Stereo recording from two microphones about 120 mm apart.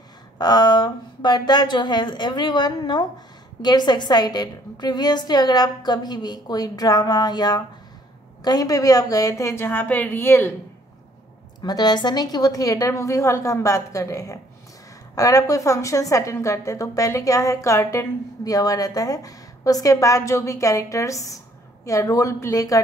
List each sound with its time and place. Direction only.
0.4 s a woman's voice: 35° left (ahead or behind); by 10.5 s 20° left (ahead or behind)
11.6 s a woman's voice: 35° left (ahead or behind)